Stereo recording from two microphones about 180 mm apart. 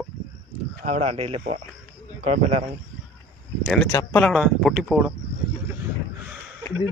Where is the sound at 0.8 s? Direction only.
35° right (ahead or behind).